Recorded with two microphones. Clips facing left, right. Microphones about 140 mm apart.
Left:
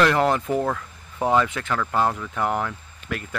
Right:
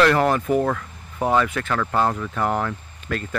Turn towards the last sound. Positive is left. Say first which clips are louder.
# right 3 dB
turn(degrees=15)  # may be behind; listen again after turning